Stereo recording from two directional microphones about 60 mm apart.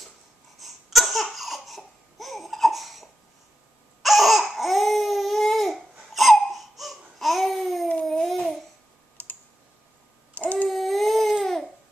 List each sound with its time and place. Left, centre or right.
0.6 s a sound: centre
1.2 s laughter: centre
4.0 s crying: centre
8.1 s babbling: centre
9.2 s computer keyboard: left
10.3 s babbling: left
10.7 s baby cry: centre